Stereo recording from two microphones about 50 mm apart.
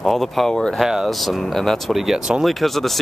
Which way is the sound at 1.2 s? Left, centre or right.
Centre.